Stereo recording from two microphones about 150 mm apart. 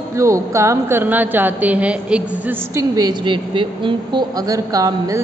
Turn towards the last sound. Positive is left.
turn(degrees=-25)  # may be behind; listen again after turning